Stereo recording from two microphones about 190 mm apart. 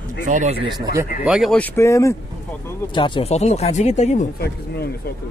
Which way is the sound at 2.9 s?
25° left (ahead or behind).